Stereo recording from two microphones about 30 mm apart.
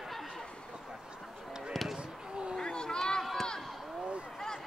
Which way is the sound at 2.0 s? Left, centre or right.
Right.